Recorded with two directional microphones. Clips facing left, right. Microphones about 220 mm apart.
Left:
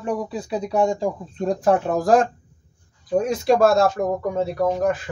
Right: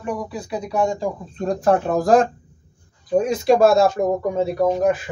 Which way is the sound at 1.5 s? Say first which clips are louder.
Right 1 dB; 10° left (ahead or behind).